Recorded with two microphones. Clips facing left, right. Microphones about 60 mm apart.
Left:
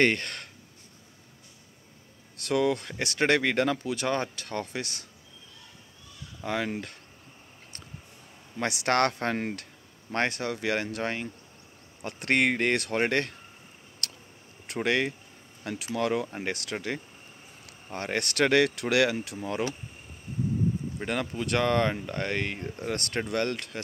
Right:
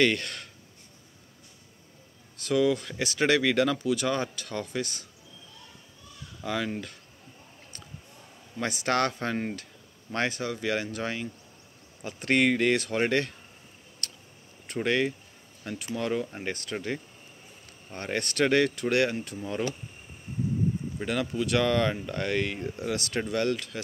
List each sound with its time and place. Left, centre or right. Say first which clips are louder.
0.0 s speech: even; left
2.4 s speech: right 1 dB; left
6.4 s speech: even; left
8.5 s speech: left 2 dB; left
14.0 s a sound: left 2 dB; left
14.7 s speech: even; left
15.6 s speech: left 3 dB; left
16.7 s speech: even; left
19.4 s speech: even; left
21.0 s speech: right 3 dB; left